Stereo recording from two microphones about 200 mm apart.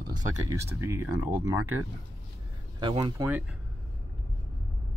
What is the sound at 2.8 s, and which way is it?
Speech, 25° right (ahead or behind).